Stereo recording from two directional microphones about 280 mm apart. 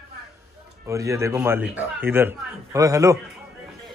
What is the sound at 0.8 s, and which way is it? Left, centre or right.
Speech, centre.